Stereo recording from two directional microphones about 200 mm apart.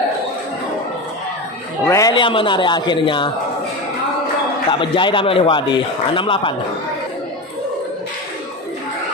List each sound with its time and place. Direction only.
1.9 s a man's voice: 20° left (ahead or behind)
4.6 s a man's voice: 25° left (ahead or behind)